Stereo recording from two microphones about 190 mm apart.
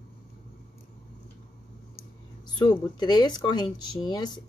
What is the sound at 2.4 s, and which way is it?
Speech, 25° left (ahead or behind).